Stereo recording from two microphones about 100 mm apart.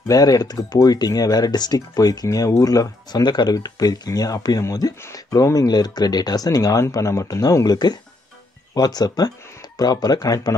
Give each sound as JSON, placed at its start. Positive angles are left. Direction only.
{"t": 0.1, "sound": "speech", "side_deg": 40}